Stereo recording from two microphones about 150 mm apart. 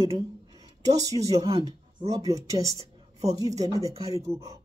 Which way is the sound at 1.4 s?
40° right (ahead or behind).